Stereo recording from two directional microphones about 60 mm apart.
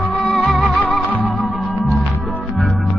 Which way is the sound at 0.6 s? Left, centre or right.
Left.